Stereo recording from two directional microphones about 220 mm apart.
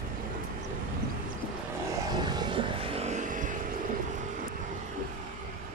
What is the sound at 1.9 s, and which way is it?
Vehicle, 20° right (ahead or behind).